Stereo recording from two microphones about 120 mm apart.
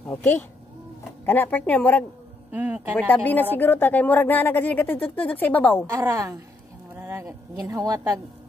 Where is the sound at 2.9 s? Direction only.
15° left (ahead or behind).